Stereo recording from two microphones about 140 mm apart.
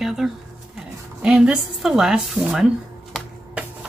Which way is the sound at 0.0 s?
Centre (ahead or behind).